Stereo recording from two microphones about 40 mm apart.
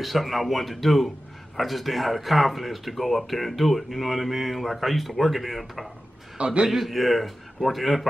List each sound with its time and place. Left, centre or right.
0.0 s speech: centre
6.3 s a man's voice: right
6.7 s speech: centre